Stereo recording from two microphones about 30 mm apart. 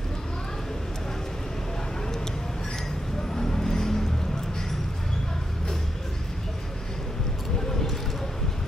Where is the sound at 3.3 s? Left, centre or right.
Centre.